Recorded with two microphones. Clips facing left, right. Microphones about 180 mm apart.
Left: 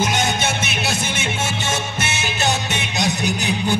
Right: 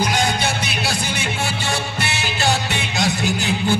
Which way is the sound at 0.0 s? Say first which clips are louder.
Even; 20° left (ahead or behind).